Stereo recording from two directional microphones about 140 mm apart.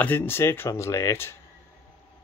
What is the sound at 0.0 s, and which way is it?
Speech, 15° left (ahead or behind).